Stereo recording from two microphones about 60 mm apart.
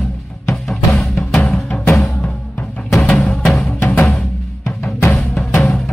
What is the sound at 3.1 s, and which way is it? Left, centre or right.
Music, centre.